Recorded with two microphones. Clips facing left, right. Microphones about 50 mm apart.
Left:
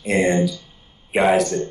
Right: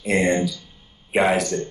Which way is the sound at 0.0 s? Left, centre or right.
Centre.